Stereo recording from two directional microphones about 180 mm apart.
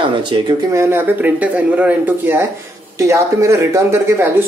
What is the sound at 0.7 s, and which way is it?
Speech, 15° right (ahead or behind).